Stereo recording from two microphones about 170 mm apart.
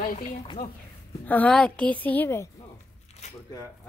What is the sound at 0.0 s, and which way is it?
Speech, 50° left (ahead or behind).